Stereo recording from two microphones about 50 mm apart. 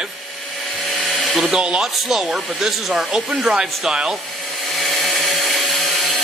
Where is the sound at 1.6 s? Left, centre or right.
Centre.